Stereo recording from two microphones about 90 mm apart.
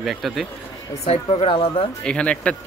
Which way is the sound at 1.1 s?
80° left.